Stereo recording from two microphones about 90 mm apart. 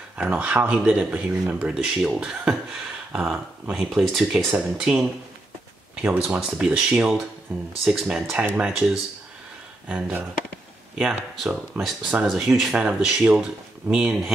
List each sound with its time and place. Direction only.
0.2 s speech: 15° right (ahead or behind)
12.3 s speech: 5° right (ahead or behind)
12.8 s speech: 15° right (ahead or behind)